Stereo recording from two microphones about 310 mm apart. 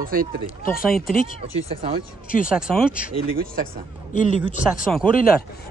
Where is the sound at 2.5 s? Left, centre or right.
Centre.